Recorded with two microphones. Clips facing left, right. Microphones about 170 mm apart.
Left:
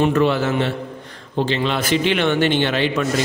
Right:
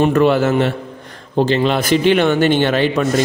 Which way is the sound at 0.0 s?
50° right (ahead or behind).